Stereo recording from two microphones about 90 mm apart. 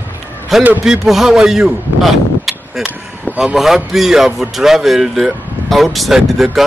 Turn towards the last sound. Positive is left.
turn(degrees=-5)  # may be behind; listen again after turning